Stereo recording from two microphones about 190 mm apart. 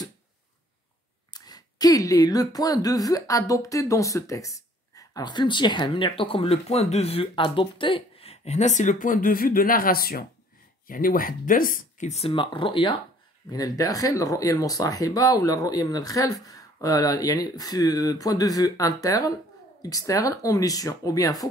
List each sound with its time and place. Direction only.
1.3 s speech: 20° left (ahead or behind)